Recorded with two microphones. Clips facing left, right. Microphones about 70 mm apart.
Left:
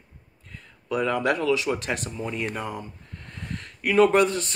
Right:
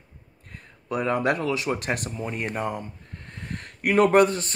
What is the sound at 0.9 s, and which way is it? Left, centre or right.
Speech, right.